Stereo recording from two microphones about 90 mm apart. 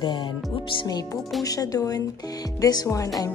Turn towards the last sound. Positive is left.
turn(degrees=40)  # may be behind; listen again after turning